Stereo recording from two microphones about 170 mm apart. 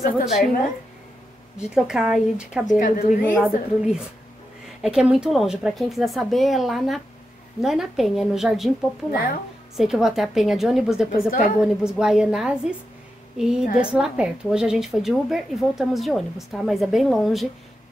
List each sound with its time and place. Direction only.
1.6 s speech: 5° right (ahead or behind)
2.8 s a woman's voice: 50° left (ahead or behind)
3.3 s speech: centre (ahead or behind)
11.2 s a woman's voice: 55° left (ahead or behind)
11.6 s speech: 5° right (ahead or behind)